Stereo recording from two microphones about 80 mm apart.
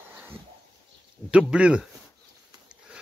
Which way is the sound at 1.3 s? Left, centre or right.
Centre.